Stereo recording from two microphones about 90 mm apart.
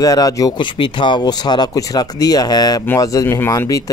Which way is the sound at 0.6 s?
60° left (ahead or behind).